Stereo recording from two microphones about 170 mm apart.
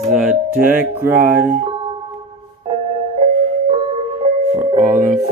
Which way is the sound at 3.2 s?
35° right (ahead or behind).